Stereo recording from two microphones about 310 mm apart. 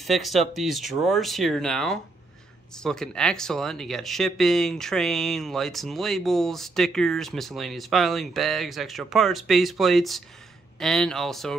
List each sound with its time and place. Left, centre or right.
0.0 s speech: centre